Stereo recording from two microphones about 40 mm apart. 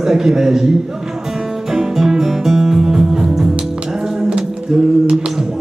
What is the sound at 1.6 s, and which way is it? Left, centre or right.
Music, centre.